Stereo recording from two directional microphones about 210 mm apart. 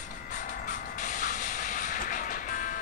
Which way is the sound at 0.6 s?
35° left (ahead or behind).